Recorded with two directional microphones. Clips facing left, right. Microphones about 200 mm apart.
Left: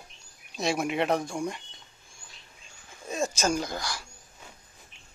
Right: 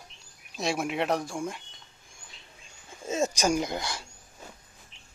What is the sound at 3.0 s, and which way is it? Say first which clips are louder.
Speech: right 2 dB; 20° right (ahead or behind).